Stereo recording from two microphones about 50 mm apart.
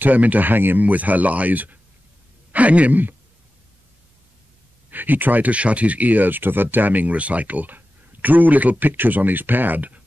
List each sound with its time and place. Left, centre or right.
0.0 s speech: right
4.9 s speech: right